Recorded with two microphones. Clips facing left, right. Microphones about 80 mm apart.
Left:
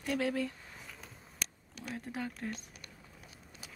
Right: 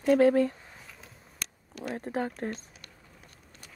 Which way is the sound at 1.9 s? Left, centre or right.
Right.